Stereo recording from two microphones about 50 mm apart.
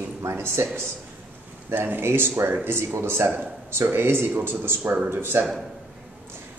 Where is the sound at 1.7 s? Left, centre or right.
Right.